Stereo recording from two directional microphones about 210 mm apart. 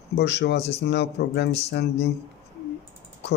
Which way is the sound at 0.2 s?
55° left (ahead or behind).